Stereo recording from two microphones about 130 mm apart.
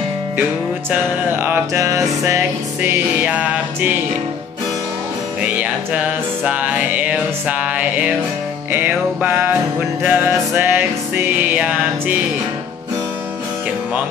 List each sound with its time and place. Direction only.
0.4 s music: 15° right (ahead or behind)
5.4 s music: 10° right (ahead or behind)